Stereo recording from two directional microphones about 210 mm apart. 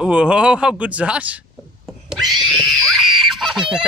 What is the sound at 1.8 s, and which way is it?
Screaming, centre (ahead or behind).